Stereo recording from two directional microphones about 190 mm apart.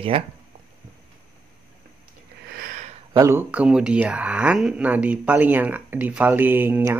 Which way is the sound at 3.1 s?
15° right (ahead or behind).